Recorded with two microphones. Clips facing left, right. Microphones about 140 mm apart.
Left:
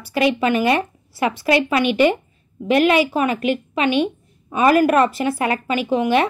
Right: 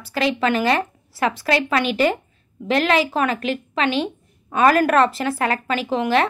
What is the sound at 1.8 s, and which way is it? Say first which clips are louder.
Speech: left 5 dB; 40° right (ahead or behind).